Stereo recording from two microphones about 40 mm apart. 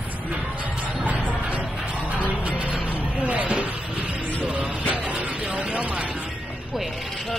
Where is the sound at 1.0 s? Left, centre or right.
Right.